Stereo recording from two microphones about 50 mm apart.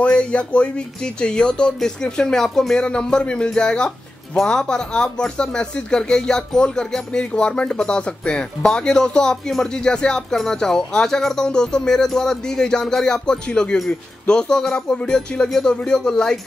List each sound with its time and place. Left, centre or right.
0.1 s speech: left